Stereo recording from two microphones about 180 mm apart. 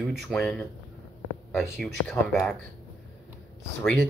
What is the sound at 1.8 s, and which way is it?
Speech, 5° left (ahead or behind).